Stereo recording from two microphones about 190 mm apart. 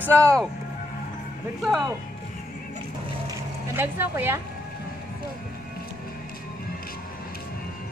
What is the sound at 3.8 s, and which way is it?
Speech, 10° right (ahead or behind).